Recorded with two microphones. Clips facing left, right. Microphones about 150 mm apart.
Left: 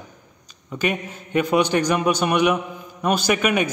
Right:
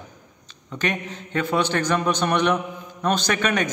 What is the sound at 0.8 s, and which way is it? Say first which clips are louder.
A man's voice: left 2 dB; 10° left (ahead or behind).